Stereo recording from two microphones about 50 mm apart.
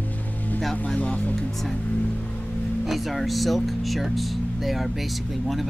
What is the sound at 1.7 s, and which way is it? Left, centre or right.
Music, left.